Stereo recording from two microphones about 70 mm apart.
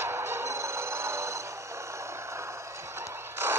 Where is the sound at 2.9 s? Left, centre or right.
Right.